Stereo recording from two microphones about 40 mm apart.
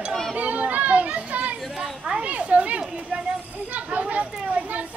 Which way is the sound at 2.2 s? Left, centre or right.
Right.